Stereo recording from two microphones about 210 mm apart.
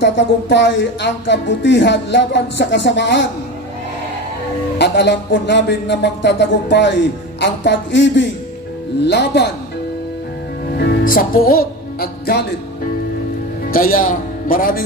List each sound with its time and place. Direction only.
0.0 s speech: 55° left (ahead or behind)
4.7 s speech: 55° left (ahead or behind)
10.8 s music: 45° left (ahead or behind)
13.7 s speech: 40° left (ahead or behind)